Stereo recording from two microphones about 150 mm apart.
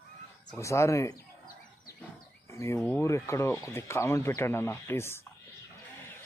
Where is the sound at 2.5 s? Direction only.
20° left (ahead or behind).